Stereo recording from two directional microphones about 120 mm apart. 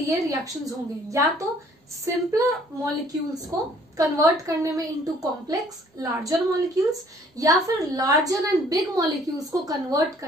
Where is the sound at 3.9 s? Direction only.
30° right (ahead or behind).